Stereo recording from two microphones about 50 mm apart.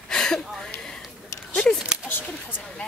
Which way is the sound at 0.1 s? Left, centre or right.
Centre.